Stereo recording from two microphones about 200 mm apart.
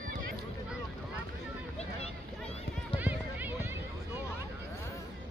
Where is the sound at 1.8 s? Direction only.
30° left (ahead or behind).